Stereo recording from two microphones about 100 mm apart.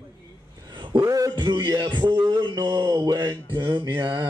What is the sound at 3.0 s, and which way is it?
Speech, 45° right (ahead or behind).